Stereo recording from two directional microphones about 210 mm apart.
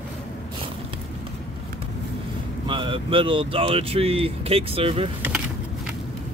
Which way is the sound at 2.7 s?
25° right (ahead or behind).